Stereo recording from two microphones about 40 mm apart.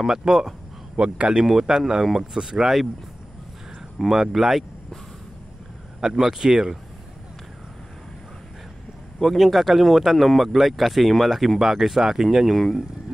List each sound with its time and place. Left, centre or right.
0.2 s speech: centre
0.9 s speech: right
1.4 s speech: centre
4.1 s speech: centre
5.9 s speech: centre
9.4 s speech: centre
12.5 s speech: centre